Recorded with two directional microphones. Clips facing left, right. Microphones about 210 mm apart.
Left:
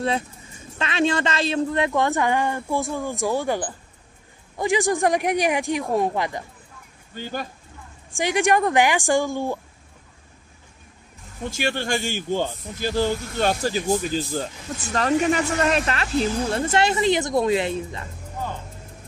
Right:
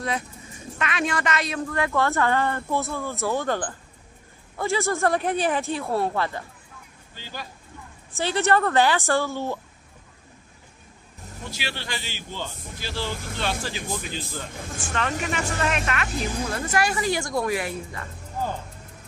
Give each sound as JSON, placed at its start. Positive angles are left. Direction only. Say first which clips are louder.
{"t": 0.7, "sound": "a woman's voice", "louder": "left 5 dB", "side_deg": 25}
{"t": 7.2, "sound": "a man's voice", "louder": "left 8 dB", "side_deg": 50}
{"t": 8.1, "sound": "a woman's voice", "louder": "left 2 dB", "side_deg": 15}
{"t": 11.4, "sound": "a man's voice", "louder": "left 9 dB", "side_deg": 50}